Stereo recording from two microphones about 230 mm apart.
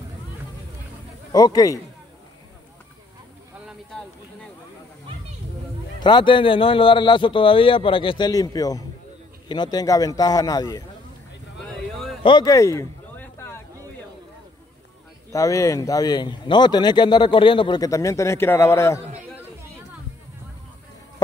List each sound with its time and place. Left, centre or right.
1.3 s a man's voice: centre
6.0 s a man's voice: left
12.2 s a sound: left
15.3 s a man's voice: centre